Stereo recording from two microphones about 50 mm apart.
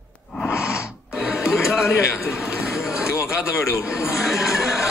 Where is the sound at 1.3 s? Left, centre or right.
Centre.